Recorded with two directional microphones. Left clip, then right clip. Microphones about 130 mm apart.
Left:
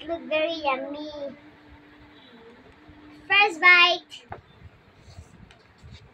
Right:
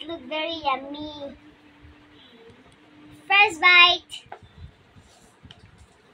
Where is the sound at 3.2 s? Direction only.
25° right (ahead or behind).